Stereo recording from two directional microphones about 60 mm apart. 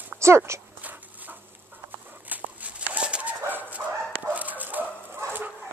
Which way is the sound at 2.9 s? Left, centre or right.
Centre.